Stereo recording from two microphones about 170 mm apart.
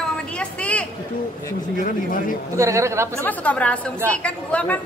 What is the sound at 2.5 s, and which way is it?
Speech, 15° right (ahead or behind).